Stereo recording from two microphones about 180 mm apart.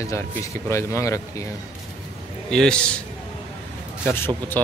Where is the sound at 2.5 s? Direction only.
5° left (ahead or behind).